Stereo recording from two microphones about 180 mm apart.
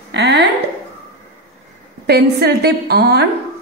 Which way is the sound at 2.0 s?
65° right (ahead or behind).